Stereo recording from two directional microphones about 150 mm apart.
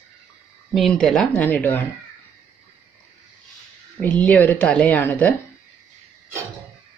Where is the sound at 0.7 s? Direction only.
5° left (ahead or behind).